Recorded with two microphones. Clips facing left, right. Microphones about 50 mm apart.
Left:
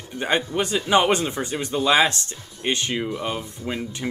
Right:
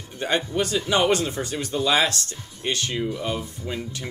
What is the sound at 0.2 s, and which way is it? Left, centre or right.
Speech, left.